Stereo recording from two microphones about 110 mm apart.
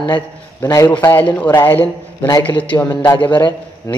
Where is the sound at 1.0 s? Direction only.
20° left (ahead or behind).